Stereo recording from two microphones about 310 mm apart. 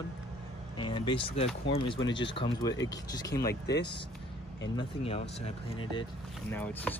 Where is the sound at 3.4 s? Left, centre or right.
Left.